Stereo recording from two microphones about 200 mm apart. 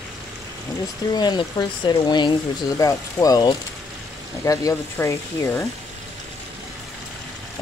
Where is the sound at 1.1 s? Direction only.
20° left (ahead or behind).